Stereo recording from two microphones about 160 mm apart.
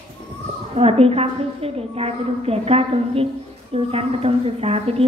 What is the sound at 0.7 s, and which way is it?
A woman's voice, 40° right (ahead or behind).